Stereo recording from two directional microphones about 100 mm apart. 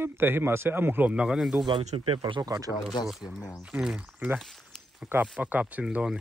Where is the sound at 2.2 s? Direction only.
45° right (ahead or behind).